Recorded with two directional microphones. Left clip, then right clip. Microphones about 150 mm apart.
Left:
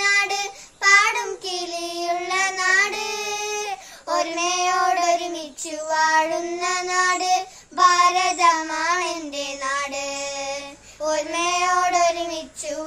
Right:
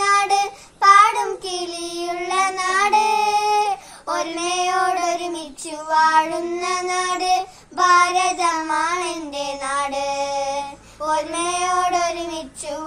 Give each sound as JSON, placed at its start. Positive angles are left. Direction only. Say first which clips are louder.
{"t": 0.0, "sound": "child singing", "louder": "right 3 dB", "side_deg": 25}